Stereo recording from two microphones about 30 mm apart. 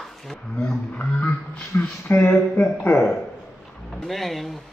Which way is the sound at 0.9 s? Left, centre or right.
Left.